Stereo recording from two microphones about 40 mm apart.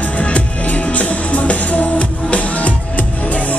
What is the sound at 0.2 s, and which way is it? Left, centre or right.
Music, left.